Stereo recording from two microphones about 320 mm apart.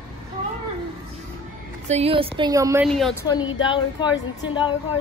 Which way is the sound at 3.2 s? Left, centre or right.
Centre.